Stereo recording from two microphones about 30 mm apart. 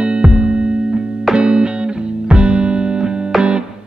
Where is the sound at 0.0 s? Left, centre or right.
Right.